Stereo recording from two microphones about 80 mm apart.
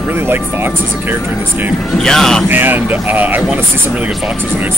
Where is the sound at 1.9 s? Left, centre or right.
Centre.